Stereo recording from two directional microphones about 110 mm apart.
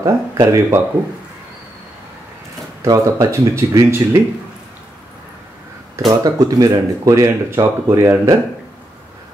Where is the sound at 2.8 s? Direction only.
30° right (ahead or behind).